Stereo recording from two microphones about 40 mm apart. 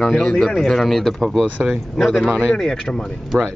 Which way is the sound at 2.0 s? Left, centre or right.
Centre.